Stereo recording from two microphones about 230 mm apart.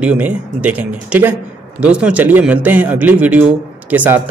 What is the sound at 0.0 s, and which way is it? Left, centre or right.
A man's voice, centre.